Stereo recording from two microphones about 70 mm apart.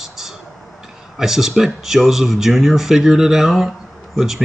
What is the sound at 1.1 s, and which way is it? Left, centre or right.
Speech, centre.